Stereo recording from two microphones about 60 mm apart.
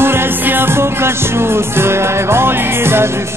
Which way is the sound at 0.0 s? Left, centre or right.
Right.